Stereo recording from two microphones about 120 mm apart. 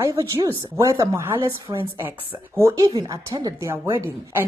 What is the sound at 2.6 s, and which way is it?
Speech, 25° right (ahead or behind).